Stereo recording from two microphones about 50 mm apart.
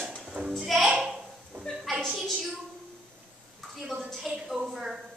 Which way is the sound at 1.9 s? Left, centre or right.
Centre.